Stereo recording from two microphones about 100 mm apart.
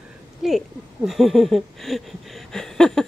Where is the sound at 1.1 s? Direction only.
Centre (ahead or behind).